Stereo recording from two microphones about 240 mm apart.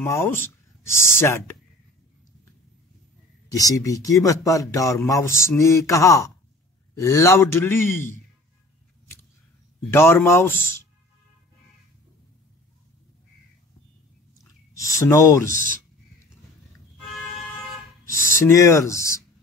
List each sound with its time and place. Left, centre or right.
0.0 s speech: centre
3.4 s speech: centre
9.9 s speech: centre
14.9 s speech: centre
15.5 s speech: right
18.3 s speech: centre